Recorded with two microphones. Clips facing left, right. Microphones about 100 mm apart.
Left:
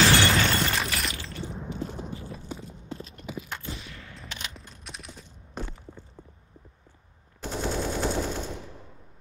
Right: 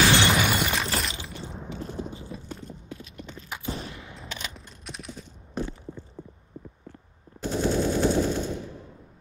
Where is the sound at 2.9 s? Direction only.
35° left (ahead or behind).